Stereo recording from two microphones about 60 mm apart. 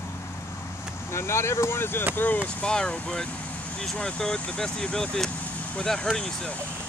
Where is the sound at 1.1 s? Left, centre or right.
Left.